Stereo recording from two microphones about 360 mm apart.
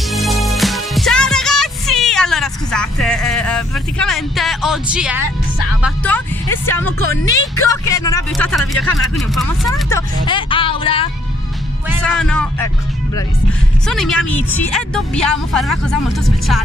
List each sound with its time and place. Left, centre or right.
0.1 s music: centre
5.8 s speech: centre
6.9 s speech: left
7.6 s speech: centre
12.1 s speech: centre
13.8 s speech: centre